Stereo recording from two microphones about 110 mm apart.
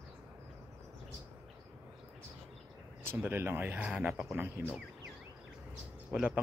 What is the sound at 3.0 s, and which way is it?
Speech, 20° right (ahead or behind).